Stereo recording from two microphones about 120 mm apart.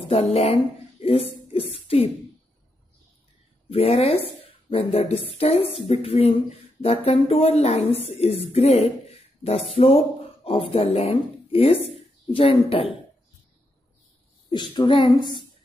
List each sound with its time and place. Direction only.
0.0 s speech: 55° left (ahead or behind)
3.7 s speech: 55° left (ahead or behind)
14.5 s speech: 40° left (ahead or behind)